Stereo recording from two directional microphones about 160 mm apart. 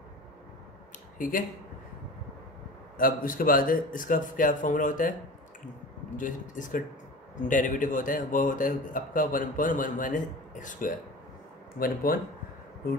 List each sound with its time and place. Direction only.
1.1 s speech: 55° left (ahead or behind)
3.0 s a man's voice: 65° left (ahead or behind)
6.1 s a man's voice: 55° left (ahead or behind)